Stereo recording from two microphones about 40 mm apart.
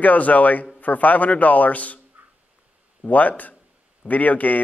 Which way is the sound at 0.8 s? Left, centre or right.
Left.